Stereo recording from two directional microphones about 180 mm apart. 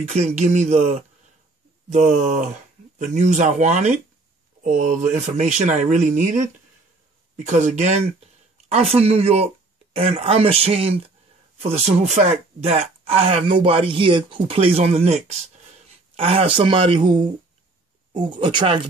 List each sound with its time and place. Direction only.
0.0 s speech: 35° right (ahead or behind)